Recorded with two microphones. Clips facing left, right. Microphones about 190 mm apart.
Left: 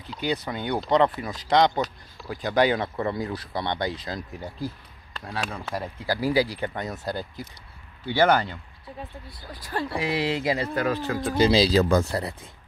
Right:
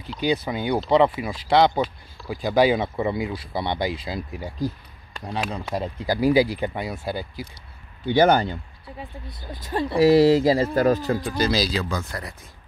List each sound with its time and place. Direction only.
0.2 s speech: 15° right (ahead or behind)
8.1 s speech: 20° right (ahead or behind)
9.9 s speech: 40° right (ahead or behind)
11.3 s speech: 25° left (ahead or behind)